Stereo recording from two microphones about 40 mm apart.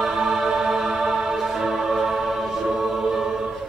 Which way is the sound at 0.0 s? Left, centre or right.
Centre.